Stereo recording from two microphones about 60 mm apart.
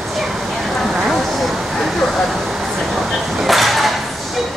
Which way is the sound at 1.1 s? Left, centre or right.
Centre.